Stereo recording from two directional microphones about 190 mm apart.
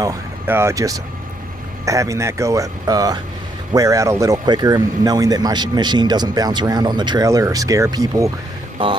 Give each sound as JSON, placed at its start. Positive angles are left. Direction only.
{"t": 0.0, "sound": "a man's voice", "side_deg": -15}